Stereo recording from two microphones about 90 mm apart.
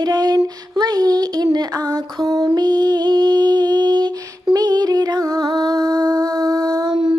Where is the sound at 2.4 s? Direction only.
50° right (ahead or behind).